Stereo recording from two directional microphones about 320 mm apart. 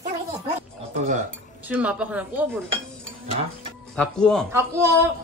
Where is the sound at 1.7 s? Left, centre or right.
Centre.